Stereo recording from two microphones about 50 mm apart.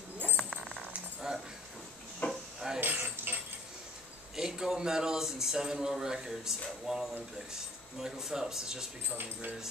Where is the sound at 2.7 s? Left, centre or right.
Right.